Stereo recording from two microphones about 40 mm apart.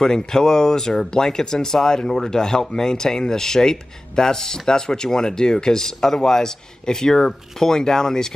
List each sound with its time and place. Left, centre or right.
0.0 s speech: centre